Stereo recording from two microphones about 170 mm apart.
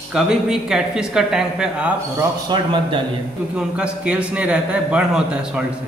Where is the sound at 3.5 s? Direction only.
5° right (ahead or behind).